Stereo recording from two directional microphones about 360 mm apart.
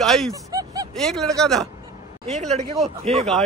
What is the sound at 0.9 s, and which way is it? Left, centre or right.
Speech, centre.